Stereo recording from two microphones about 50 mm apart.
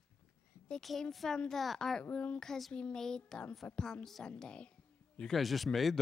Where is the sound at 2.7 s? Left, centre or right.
Centre.